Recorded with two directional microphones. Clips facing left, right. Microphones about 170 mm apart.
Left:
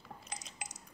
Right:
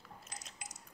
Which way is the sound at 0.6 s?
85° left.